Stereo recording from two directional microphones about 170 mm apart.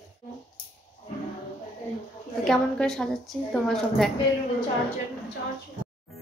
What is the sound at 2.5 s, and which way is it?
A woman's voice, 5° left (ahead or behind).